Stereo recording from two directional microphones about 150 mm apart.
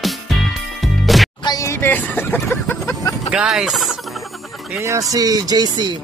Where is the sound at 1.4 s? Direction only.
20° left (ahead or behind).